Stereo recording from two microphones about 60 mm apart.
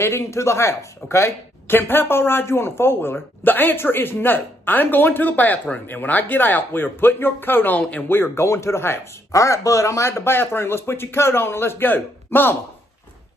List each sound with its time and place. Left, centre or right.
0.0 s speech: left
8.5 s speech: left
9.3 s speech: left